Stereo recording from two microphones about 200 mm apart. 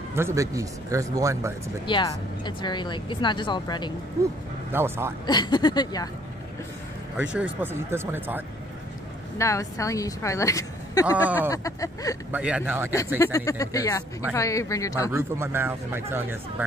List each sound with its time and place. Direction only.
0.1 s speech: 15° right (ahead or behind)
1.9 s speech: 20° left (ahead or behind)
4.7 s speech: 10° right (ahead or behind)
5.2 s speech: 20° left (ahead or behind)
7.2 s speech: 5° right (ahead or behind)
9.4 s a woman's voice: 15° left (ahead or behind)
11.2 s speech: 10° right (ahead or behind)
11.5 s a woman's voice: 15° left (ahead or behind)
12.3 s speech: 5° right (ahead or behind)
13.2 s a woman's voice: 15° left (ahead or behind)
15.1 s speech: 10° right (ahead or behind)